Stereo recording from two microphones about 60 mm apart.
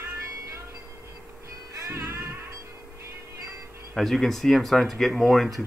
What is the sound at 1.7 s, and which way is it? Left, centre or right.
Music, right.